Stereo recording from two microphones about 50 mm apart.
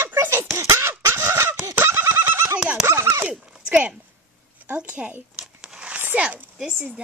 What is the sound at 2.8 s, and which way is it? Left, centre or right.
Speech, right.